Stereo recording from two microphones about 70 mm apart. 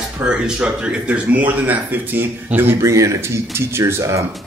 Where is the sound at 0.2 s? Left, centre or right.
Centre; by 2.8 s right.